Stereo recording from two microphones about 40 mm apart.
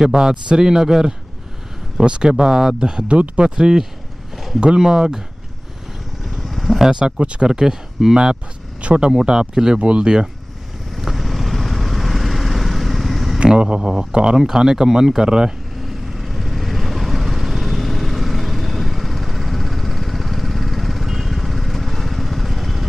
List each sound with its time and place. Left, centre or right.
0.0 s a man's voice: centre
6.4 s vehicle: centre
6.8 s speech: centre
7.2 s speech: right
7.4 s a man's voice: centre
8.8 s speech: right
9.1 s a man's voice: centre
9.8 s speech: right
11.0 s vehicle: centre
13.7 s a man's voice: centre
15.8 s vehicle: centre